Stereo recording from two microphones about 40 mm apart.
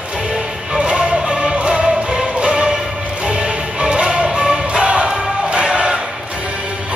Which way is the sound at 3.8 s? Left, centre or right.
Right.